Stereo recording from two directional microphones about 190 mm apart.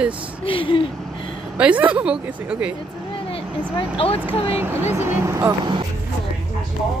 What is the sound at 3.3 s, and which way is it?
Speech, 30° left (ahead or behind).